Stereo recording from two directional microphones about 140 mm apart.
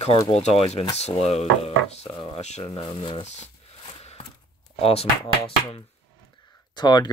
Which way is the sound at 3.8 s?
45° left (ahead or behind).